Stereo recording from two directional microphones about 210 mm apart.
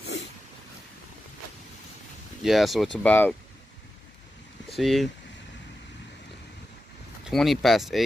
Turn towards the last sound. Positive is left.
turn(degrees=0)  # may be behind; listen again after turning